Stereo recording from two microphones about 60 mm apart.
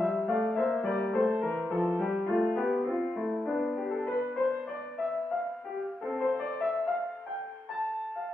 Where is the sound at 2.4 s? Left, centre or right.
Centre.